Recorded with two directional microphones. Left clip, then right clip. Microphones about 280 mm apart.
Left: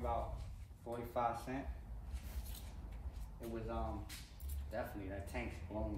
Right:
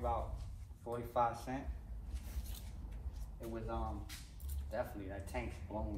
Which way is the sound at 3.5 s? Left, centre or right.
Centre.